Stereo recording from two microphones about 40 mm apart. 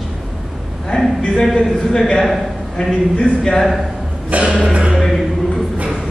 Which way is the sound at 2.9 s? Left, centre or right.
Left.